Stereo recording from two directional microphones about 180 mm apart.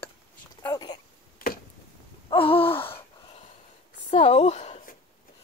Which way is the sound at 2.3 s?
30° left (ahead or behind).